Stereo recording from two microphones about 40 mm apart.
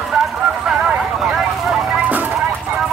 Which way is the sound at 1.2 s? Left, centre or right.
Centre.